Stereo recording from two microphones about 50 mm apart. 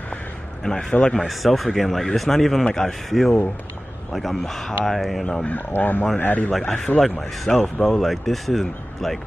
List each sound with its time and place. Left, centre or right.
0.7 s speech: centre
1.1 s speech: centre
5.2 s speech: centre
5.5 s speech: left
7.0 s speech: centre